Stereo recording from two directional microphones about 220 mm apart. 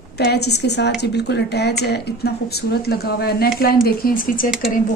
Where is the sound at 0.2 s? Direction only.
50° left (ahead or behind).